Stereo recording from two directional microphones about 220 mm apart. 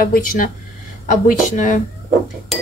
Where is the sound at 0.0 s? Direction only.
40° left (ahead or behind).